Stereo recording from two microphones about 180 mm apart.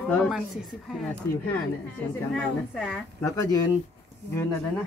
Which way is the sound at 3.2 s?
20° left (ahead or behind).